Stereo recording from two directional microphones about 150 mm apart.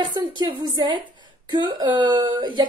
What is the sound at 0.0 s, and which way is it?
Speech, 30° right (ahead or behind).